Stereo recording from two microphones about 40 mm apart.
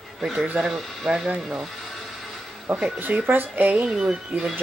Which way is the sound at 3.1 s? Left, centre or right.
Right.